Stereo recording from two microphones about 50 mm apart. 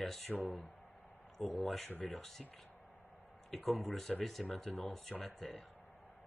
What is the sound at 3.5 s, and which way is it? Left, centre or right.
Speech, centre.